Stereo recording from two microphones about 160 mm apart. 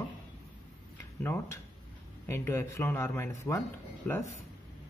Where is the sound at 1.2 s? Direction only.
15° left (ahead or behind).